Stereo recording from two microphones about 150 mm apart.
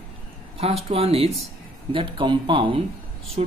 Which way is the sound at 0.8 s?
40° right (ahead or behind).